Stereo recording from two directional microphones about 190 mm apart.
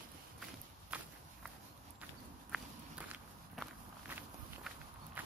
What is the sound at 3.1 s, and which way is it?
Walk, 10° right (ahead or behind).